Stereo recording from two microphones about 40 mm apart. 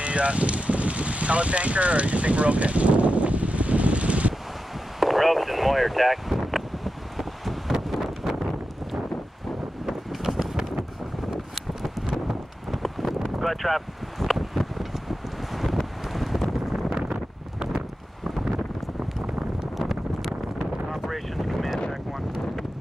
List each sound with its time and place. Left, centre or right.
0.0 s a sound: right
5.0 s wind: centre
7.9 s wind noise: centre
9.8 s wind noise: centre
11.2 s vehicle: centre
12.3 s wind: centre
20.5 s wind noise: centre